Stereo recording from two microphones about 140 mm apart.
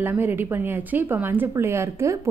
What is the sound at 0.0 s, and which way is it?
A woman's voice, 15° right (ahead or behind).